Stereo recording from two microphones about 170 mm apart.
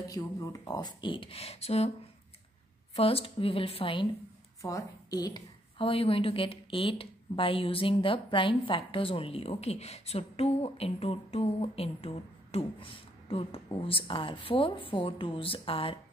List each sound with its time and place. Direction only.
0.1 s speech: 20° left (ahead or behind); by 1.9 s 35° left (ahead or behind)
3.0 s a woman's voice: 35° left (ahead or behind)
4.6 s a woman's voice: 20° left (ahead or behind)